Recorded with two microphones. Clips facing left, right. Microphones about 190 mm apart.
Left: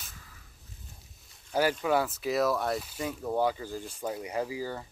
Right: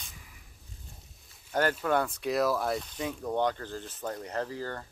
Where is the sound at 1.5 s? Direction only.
10° left (ahead or behind).